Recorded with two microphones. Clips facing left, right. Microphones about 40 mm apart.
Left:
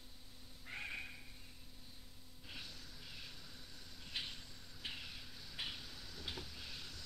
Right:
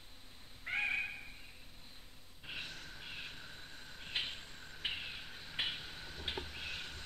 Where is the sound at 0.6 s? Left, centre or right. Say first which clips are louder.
Right 10 dB; right.